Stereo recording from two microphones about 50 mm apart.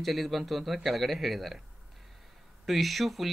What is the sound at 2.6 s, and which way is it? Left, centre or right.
Speech, centre.